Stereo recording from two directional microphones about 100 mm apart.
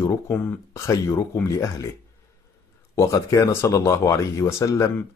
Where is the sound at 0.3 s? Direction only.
20° left (ahead or behind).